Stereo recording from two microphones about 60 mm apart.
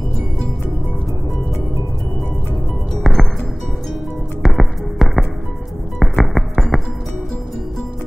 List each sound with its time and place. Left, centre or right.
3.0 s music: centre
4.4 s music: centre